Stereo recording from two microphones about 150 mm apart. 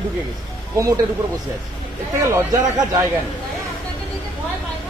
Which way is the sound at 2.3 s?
20° right (ahead or behind).